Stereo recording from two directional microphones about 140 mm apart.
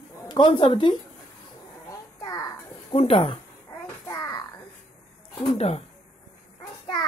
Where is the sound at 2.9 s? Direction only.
45° left (ahead or behind).